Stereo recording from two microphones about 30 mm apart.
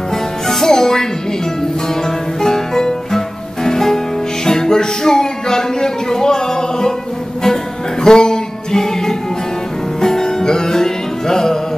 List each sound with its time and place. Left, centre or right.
0.5 s music: centre
2.4 s music: centre
8.0 s music: left